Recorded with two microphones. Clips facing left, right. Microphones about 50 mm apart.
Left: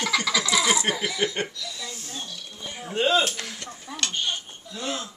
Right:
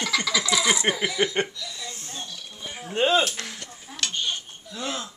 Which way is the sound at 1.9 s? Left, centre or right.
Right.